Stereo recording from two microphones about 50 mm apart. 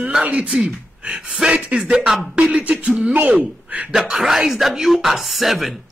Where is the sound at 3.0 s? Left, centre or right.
Right.